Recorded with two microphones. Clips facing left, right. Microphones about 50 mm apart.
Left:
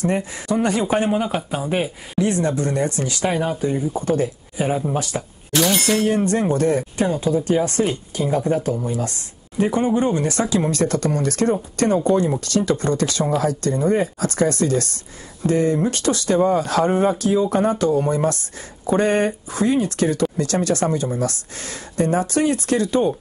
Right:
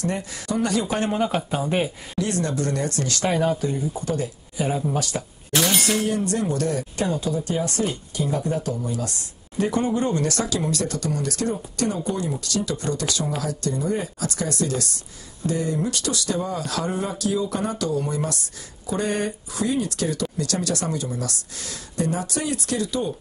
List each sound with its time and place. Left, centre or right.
0.0 s speech: left
1.0 s speech: centre
2.1 s speech: left
3.6 s speech: left
5.5 s speech: centre
6.0 s speech: left
9.6 s speech: left